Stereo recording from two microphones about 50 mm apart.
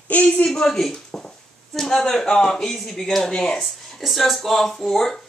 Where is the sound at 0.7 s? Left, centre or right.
Centre.